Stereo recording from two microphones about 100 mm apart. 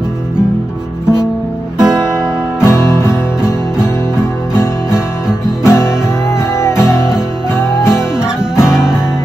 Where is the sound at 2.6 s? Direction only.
25° left (ahead or behind).